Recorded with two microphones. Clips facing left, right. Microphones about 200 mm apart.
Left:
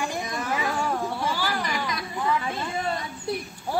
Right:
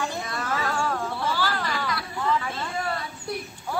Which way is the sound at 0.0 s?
15° left (ahead or behind).